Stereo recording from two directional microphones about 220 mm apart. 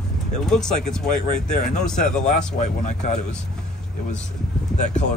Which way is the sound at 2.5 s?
35° left (ahead or behind).